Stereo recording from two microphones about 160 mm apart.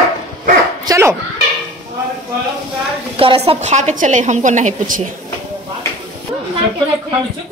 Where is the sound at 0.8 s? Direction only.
20° right (ahead or behind).